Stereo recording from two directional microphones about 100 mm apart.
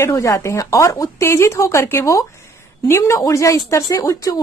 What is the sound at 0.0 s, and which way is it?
Speech, 30° left (ahead or behind).